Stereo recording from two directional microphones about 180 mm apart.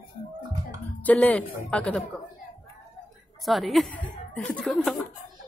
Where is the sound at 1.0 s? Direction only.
10° left (ahead or behind).